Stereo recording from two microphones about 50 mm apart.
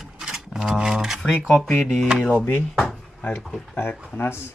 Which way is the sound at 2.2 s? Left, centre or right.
Left.